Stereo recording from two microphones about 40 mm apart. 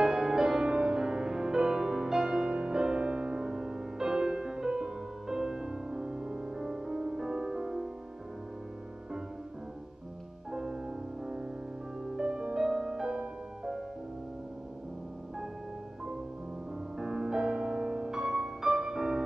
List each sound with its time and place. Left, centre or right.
0.0 s music: centre
10.5 s music: centre
17.0 s music: centre